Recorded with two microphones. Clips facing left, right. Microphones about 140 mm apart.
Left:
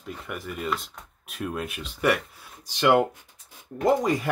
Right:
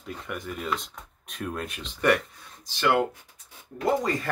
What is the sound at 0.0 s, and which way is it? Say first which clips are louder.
Speech: even; centre (ahead or behind).